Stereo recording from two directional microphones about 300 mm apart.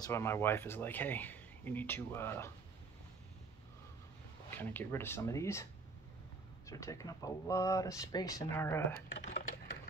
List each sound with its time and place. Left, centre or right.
0.0 s speech: centre
4.6 s speech: centre
8.9 s speech: left